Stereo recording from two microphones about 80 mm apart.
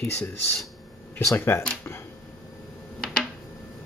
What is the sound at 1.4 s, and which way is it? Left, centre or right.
Speech, left.